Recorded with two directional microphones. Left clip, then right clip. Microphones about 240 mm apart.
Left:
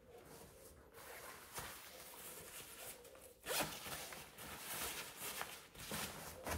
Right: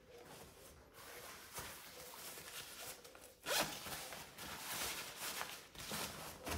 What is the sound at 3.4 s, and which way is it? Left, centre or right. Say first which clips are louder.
Zipper: right 3 dB; centre.